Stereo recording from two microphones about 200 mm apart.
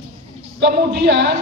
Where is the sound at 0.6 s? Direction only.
55° right (ahead or behind).